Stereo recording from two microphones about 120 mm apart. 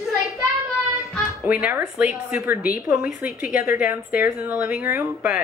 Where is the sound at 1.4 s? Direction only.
15° right (ahead or behind).